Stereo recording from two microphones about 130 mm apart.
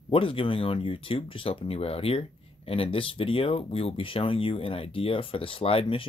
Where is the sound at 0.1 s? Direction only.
45° left (ahead or behind).